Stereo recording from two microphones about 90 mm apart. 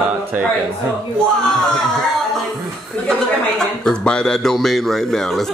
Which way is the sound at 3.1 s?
5° left (ahead or behind).